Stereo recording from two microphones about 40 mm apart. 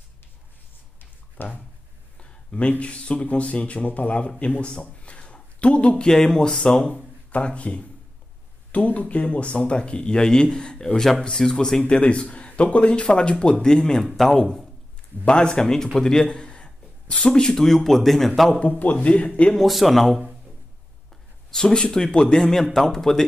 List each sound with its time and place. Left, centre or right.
1.4 s speech: left
2.1 s a sound: left
2.8 s a man's voice: left
6.0 s speech: centre
6.7 s speech: left
11.0 s speech: centre
14.0 s speech: centre
15.2 s a man's voice: left
17.3 s speech: centre
18.6 s speech: left
19.5 s speech: centre
21.6 s speech: left
22.4 s speech: centre